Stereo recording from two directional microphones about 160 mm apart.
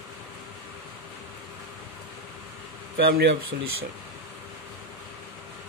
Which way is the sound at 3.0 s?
85° right.